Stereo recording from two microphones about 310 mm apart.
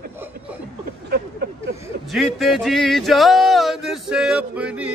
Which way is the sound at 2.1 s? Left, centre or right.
Centre.